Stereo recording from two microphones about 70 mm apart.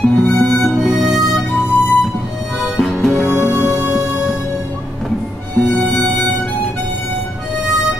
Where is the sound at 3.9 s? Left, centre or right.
Centre.